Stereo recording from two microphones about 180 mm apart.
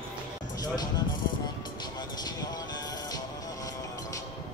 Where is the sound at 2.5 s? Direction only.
20° left (ahead or behind).